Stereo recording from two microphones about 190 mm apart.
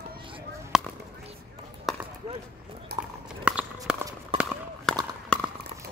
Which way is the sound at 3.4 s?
5° right (ahead or behind).